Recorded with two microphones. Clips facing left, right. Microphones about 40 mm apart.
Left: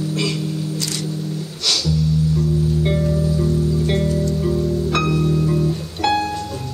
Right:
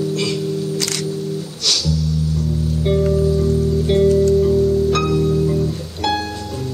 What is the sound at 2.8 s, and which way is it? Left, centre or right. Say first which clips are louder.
Music: right 3 dB; centre.